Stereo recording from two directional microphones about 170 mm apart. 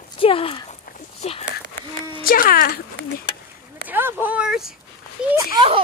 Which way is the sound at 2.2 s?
55° left (ahead or behind).